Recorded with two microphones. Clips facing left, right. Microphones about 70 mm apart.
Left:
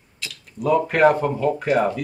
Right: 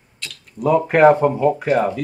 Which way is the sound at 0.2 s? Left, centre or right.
Centre.